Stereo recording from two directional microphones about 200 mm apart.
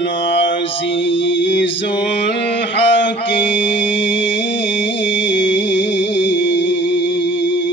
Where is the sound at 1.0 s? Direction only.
65° left (ahead or behind).